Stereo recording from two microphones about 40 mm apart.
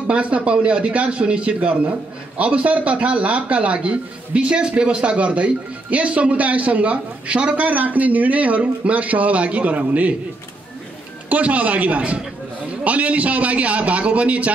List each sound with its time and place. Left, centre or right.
0.0 s speech: right
7.6 s speech: right
11.2 s speech: right